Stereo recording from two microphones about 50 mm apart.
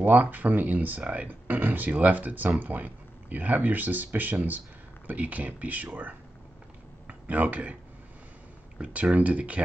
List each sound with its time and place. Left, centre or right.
0.0 s speech: right
8.7 s speech: right